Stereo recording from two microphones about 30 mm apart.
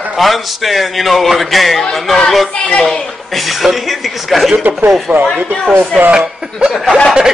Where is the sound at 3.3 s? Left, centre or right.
Centre.